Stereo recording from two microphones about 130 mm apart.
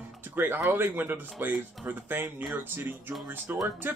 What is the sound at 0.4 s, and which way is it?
Speech, 15° right (ahead or behind).